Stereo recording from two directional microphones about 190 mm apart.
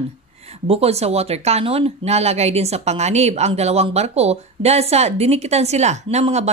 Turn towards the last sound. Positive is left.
turn(degrees=-35)  # may be behind; listen again after turning